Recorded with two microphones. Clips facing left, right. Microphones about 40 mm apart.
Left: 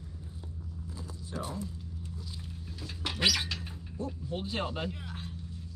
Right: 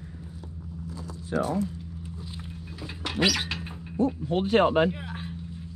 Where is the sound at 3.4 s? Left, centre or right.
Right.